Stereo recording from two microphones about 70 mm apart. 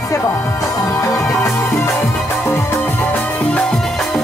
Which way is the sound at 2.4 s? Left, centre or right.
Left.